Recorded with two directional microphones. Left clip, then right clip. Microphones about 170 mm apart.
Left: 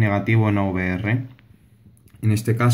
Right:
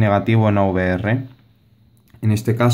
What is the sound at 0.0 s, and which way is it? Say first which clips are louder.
Speech: right 5 dB; 35° right (ahead or behind).